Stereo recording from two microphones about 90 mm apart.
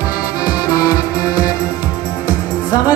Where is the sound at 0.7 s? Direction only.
45° left (ahead or behind).